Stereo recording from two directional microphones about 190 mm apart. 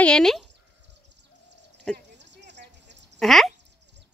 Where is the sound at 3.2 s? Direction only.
Centre (ahead or behind).